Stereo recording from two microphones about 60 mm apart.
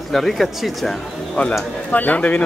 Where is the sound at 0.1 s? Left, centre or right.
Centre.